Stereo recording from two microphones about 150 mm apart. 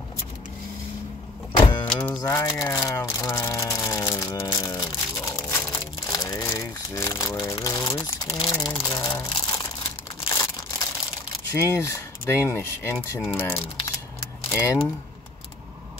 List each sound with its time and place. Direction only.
1.6 s vehicle: 30° left (ahead or behind)
1.9 s speech: 10° left (ahead or behind)
2.2 s speech: 20° left (ahead or behind)
2.6 s a sound: 20° left (ahead or behind)
7.5 s crumpling: 25° left (ahead or behind)
11.5 s speech: 20° left (ahead or behind)